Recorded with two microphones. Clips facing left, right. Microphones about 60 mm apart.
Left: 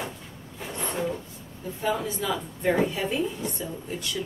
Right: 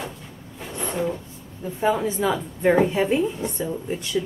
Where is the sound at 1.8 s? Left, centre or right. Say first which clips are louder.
Right 6 dB; right.